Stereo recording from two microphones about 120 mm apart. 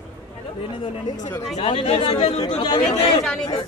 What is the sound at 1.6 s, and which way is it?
Speech, 50° left (ahead or behind).